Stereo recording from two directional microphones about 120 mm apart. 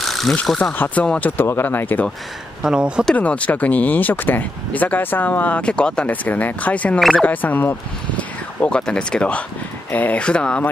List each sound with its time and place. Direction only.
0.0 s a sound: centre (ahead or behind)
0.4 s speech: 5° left (ahead or behind)
2.6 s speech: 5° right (ahead or behind)
3.1 s speech: 10° left (ahead or behind)
7.0 s speech: centre (ahead or behind)
7.2 s speech: 15° left (ahead or behind)